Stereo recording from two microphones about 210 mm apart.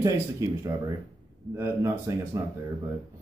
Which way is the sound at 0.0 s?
15° right (ahead or behind).